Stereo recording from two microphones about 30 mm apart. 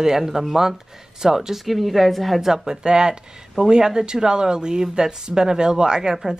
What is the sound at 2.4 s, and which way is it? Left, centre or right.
Speech, centre.